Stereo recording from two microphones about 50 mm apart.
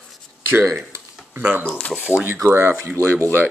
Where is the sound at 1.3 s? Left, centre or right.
Right.